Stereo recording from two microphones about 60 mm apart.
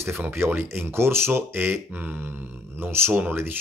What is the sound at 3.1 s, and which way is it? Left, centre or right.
Speech, right.